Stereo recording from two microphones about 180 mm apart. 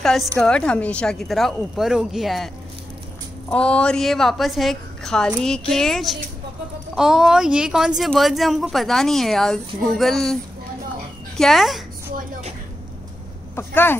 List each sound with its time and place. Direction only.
0.0 s a woman's voice: centre (ahead or behind)
12.2 s a sound: 40° right (ahead or behind)
13.6 s speech: 10° left (ahead or behind)